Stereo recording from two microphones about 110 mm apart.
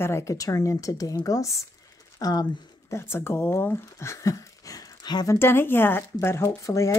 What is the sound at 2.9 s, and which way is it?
Speech, 20° left (ahead or behind).